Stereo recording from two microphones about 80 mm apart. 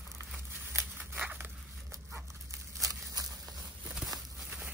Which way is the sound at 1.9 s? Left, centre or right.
Right.